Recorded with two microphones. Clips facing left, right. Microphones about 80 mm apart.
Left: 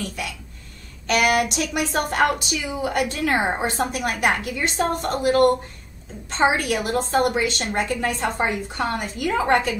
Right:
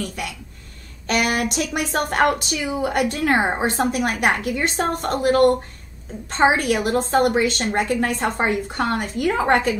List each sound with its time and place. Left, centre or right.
0.0 s a woman's voice: right